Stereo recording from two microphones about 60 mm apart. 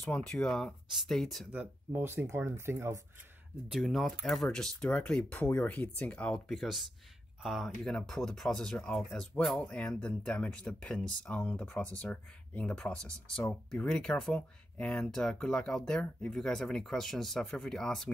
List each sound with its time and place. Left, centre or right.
0.2 s speech: centre
1.9 s speech: right
3.6 s speech: centre
4.7 s speech: left
6.5 s speech: centre
9.7 s speech: left
15.0 s speech: centre